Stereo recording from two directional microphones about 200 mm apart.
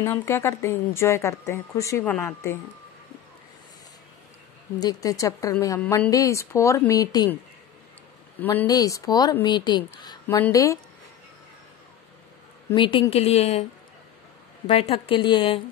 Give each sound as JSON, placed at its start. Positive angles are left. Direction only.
{"t": 0.0, "sound": "speech", "side_deg": 15}
{"t": 4.7, "sound": "speech", "side_deg": 20}
{"t": 8.4, "sound": "speech", "side_deg": 10}
{"t": 12.7, "sound": "a woman's voice", "side_deg": 25}
{"t": 14.7, "sound": "speech", "side_deg": 30}